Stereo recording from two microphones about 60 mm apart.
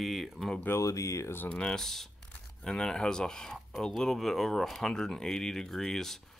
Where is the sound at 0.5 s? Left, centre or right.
Left.